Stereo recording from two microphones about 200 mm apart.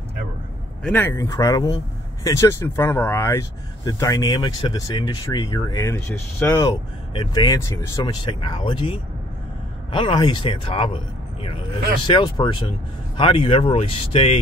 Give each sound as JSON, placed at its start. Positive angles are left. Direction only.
{"t": 0.8, "sound": "speech", "side_deg": 10}
{"t": 12.1, "sound": "speech", "side_deg": 20}